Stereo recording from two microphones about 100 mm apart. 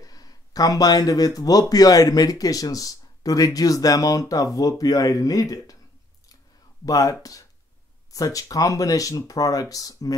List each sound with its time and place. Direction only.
0.0 s speech: 40° left (ahead or behind)
6.9 s speech: 35° left (ahead or behind)